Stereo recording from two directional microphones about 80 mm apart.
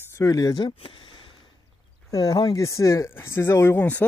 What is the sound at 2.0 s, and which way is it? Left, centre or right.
Speech, left.